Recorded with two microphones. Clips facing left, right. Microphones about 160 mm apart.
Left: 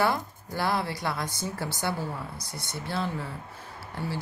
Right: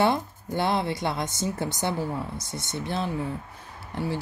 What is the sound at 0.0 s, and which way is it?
Speech, 20° right (ahead or behind).